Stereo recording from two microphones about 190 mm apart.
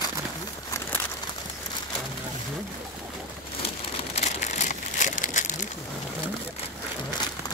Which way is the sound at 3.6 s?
30° left (ahead or behind).